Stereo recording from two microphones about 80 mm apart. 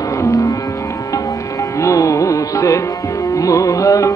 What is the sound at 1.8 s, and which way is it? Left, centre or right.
Music, left.